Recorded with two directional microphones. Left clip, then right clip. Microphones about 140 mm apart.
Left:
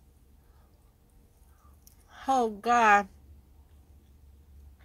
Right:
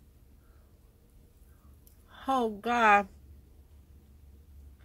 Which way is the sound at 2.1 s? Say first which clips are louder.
Left 3 dB; 25° right (ahead or behind).